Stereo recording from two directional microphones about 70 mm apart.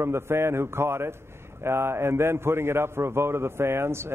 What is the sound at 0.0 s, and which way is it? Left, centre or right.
A man's voice, right.